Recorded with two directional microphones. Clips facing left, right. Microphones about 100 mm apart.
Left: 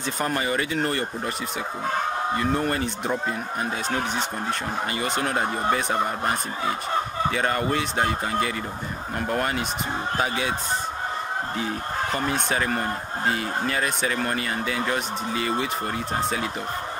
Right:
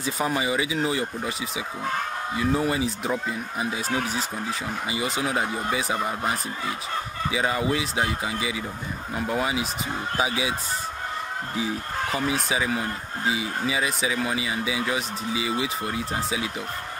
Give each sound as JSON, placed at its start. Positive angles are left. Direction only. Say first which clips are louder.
{"t": 0.0, "sound": "speech", "louder": "even", "side_deg": -5}
{"t": 2.3, "sound": "speech", "louder": "right 3 dB", "side_deg": -5}
{"t": 7.2, "sound": "speech", "louder": "right 2 dB", "side_deg": -5}
{"t": 11.5, "sound": "speech", "louder": "left 1 dB", "side_deg": -5}